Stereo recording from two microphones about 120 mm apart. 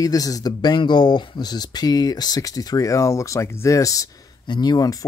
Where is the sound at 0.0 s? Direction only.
30° left (ahead or behind).